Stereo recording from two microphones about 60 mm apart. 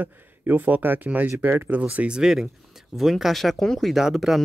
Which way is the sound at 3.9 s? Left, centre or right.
Centre.